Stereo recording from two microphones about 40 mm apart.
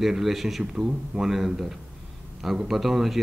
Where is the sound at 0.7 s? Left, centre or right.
Right.